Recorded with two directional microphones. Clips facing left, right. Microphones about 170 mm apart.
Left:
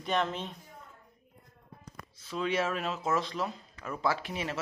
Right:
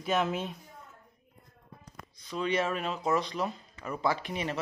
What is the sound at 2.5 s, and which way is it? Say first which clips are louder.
Speech: right 1 dB; centre (ahead or behind).